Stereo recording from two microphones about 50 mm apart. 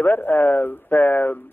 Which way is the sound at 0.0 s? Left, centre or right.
Left.